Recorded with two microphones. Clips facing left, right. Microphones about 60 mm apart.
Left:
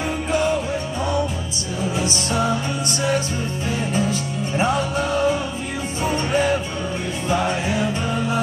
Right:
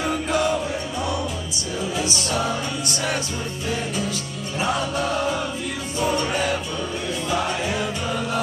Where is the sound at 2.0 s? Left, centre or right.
Left.